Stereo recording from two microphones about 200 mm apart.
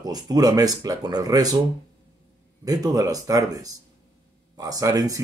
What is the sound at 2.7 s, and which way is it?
Speech, 20° right (ahead or behind).